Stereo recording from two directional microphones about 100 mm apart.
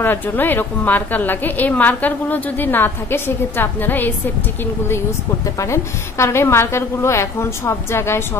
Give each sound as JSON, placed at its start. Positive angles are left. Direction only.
{"t": 0.0, "sound": "a woman's voice", "side_deg": 20}
{"t": 5.6, "sound": "a woman's voice", "side_deg": 30}